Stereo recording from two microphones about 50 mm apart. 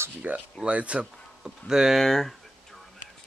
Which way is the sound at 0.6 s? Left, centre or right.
Right.